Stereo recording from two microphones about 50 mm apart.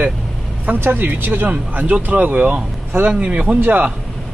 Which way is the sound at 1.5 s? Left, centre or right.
Right.